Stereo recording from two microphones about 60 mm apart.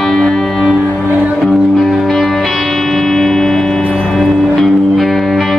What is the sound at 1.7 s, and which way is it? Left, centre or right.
Music, centre.